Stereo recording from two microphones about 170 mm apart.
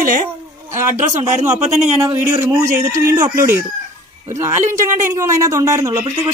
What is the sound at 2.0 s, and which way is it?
Speech, 15° right (ahead or behind).